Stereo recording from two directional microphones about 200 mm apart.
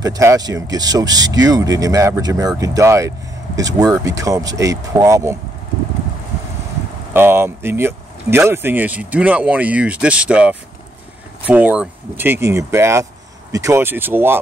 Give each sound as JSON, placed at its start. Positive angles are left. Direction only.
{"t": 0.0, "sound": "speech", "side_deg": -15}
{"t": 7.2, "sound": "speech", "side_deg": -10}